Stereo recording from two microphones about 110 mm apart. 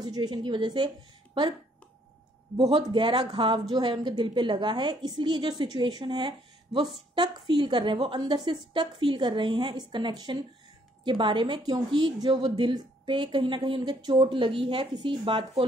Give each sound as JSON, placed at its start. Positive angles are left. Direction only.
{"t": 0.0, "sound": "a woman's voice", "side_deg": -40}
{"t": 2.9, "sound": "a woman's voice", "side_deg": -50}